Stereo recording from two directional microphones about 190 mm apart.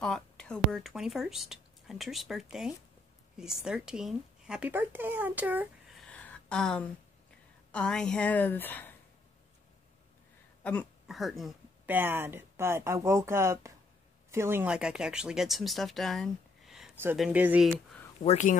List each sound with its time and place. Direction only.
0.0 s a woman's voice: 5° left (ahead or behind)
10.6 s speech: 5° left (ahead or behind)
18.2 s speech: 35° left (ahead or behind)